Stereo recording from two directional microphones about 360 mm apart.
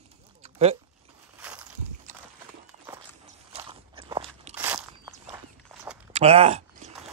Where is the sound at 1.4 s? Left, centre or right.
Centre.